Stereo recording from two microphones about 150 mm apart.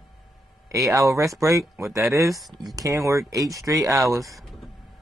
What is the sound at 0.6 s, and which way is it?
Speech, 20° right (ahead or behind).